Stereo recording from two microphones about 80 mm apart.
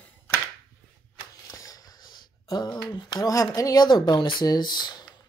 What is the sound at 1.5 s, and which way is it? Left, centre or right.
Wheeze, left.